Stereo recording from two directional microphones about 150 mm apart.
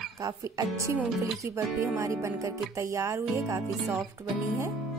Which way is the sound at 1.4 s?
20° right (ahead or behind).